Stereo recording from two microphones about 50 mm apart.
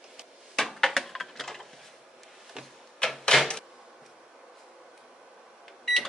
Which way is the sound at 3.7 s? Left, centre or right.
Centre.